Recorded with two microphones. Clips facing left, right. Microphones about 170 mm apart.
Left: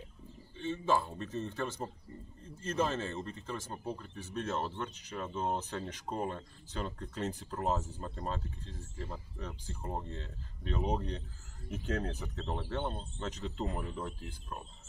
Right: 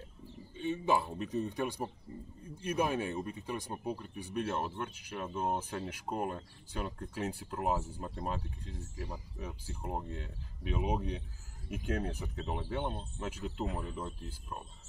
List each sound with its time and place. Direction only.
0.6 s speech: 15° right (ahead or behind)